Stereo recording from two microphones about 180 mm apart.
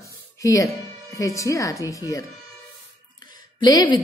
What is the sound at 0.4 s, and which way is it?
Speech, 15° left (ahead or behind).